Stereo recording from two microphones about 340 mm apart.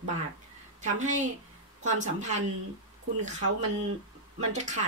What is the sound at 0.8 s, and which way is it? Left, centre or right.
Speech, right.